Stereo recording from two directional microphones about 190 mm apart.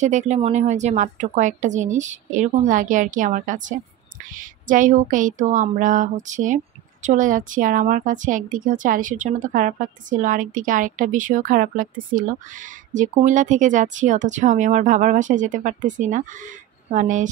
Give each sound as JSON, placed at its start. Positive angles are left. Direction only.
{"t": 0.0, "sound": "a woman's voice", "side_deg": -40}